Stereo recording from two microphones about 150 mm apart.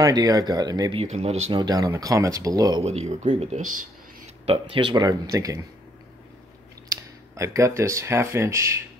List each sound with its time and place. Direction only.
0.0 s speech: 25° right (ahead or behind)
0.9 s speech: 45° right (ahead or behind)
1.5 s speech: 25° right (ahead or behind)
2.8 s speech: 45° right (ahead or behind)
4.5 s speech: 35° right (ahead or behind)
7.0 s speech: 20° right (ahead or behind)